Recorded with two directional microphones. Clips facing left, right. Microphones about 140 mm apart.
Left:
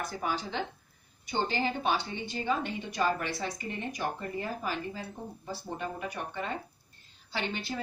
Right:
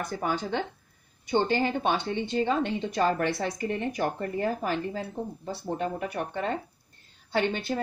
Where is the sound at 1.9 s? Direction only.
60° right (ahead or behind).